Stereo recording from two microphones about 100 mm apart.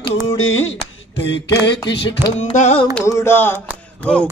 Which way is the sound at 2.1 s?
70° left (ahead or behind).